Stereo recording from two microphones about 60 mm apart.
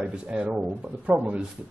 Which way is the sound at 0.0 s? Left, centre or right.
Centre.